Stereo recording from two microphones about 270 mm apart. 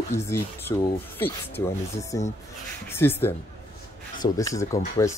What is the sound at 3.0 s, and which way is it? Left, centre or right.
Speech, centre.